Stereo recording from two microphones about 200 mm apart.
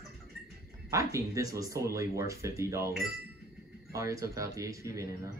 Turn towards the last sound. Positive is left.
turn(degrees=-15)  # may be behind; listen again after turning